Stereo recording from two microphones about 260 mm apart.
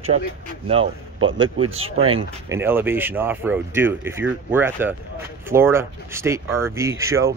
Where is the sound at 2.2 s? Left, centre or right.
Centre.